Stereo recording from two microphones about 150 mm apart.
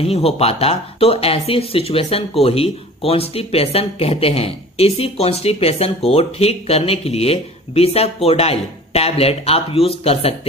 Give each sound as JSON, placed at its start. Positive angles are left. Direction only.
{"t": 0.0, "sound": "speech", "side_deg": 40}